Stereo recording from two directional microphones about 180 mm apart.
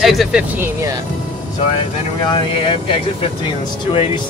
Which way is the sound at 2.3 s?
30° left (ahead or behind).